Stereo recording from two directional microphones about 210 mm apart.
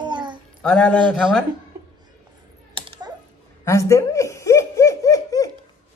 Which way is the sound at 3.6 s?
15° left (ahead or behind).